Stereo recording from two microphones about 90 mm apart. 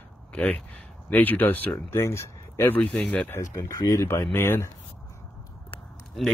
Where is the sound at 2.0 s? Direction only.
30° left (ahead or behind).